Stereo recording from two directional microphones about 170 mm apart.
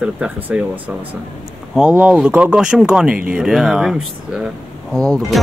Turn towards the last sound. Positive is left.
turn(degrees=0)  # may be behind; listen again after turning